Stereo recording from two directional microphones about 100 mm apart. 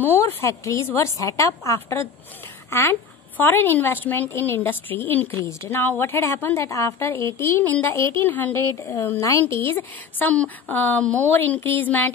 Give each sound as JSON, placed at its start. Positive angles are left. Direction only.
{"t": 0.0, "sound": "a woman's voice", "side_deg": 20}